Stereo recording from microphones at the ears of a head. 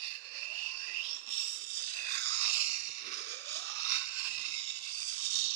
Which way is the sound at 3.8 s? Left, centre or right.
Right.